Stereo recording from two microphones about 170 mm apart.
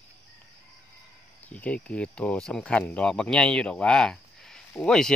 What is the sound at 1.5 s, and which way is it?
Speech, 10° left (ahead or behind).